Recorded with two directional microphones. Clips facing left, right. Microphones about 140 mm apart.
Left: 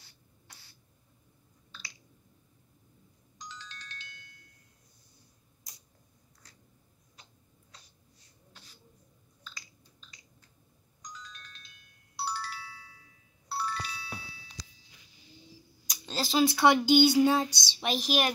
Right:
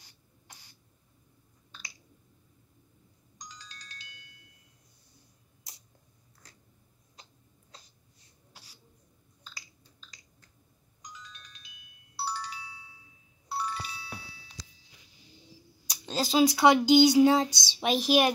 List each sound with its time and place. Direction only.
0.5 s a sound: 15° right (ahead or behind)
3.3 s music: 40° right (ahead or behind)
11.0 s music: 5° right (ahead or behind)
16.1 s speech: 15° right (ahead or behind)